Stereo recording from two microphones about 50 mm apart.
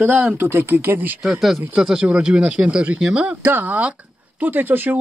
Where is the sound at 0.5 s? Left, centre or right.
Right.